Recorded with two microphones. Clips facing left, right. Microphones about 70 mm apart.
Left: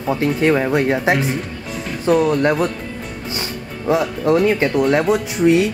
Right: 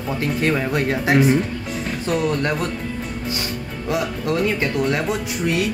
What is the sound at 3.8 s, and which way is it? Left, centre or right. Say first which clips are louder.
Speech: left 6 dB; left.